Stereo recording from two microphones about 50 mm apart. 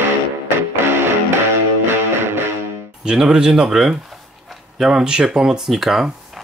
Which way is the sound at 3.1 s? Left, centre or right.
Centre.